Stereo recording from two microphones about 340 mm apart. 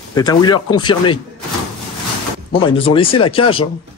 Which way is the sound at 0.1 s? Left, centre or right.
Centre.